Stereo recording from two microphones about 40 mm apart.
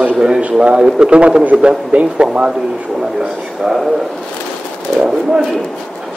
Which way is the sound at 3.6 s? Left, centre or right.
Centre.